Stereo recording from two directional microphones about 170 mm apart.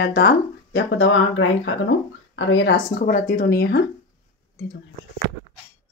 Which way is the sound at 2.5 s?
85° left.